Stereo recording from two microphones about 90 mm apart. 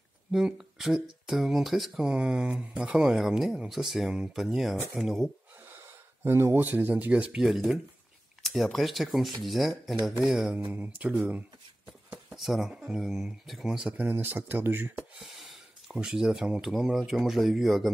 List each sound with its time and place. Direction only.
0.3 s speech: 5° right (ahead or behind)
5.7 s speech: 25° right (ahead or behind)
7.4 s speech: centre (ahead or behind)
12.4 s speech: centre (ahead or behind)
13.9 s speech: 20° right (ahead or behind)
15.1 s speech: centre (ahead or behind)